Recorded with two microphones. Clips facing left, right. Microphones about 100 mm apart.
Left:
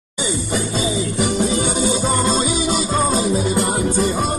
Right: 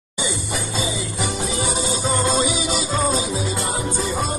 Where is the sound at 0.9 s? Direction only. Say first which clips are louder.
Left 6 dB; 55° left (ahead or behind).